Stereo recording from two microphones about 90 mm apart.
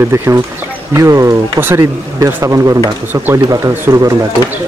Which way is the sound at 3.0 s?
20° right (ahead or behind).